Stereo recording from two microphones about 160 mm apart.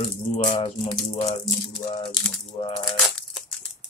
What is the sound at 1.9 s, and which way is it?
Speech, 35° left (ahead or behind).